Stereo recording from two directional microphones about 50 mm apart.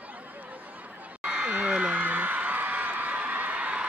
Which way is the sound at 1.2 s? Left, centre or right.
Right.